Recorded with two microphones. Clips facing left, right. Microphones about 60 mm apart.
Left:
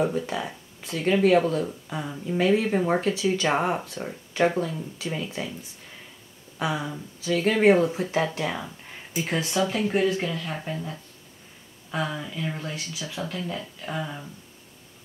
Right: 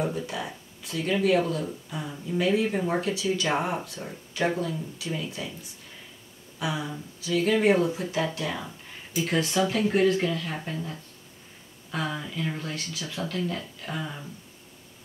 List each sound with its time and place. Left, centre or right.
0.0 s speech: left
1.5 s speech: left
6.6 s speech: left
9.1 s speech: centre
9.6 s speech: centre
12.1 s speech: centre